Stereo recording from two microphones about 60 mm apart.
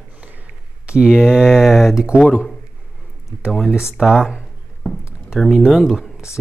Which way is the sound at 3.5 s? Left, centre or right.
Centre.